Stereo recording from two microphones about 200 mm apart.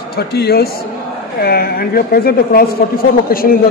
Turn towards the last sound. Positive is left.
turn(degrees=45)  # may be behind; listen again after turning